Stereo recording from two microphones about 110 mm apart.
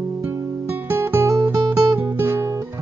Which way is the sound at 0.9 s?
25° right (ahead or behind).